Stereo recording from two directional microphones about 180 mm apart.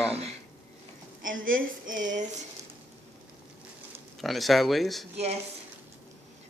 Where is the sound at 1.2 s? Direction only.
50° right (ahead or behind).